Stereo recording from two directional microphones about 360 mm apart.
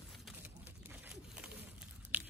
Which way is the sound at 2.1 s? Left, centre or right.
Centre.